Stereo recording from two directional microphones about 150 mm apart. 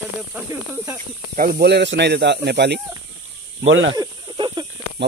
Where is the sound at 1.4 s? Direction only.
85° right.